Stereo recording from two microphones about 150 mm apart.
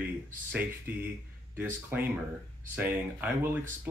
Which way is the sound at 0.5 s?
10° right (ahead or behind).